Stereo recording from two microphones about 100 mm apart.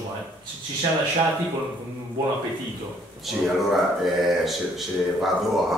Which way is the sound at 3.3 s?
Centre (ahead or behind).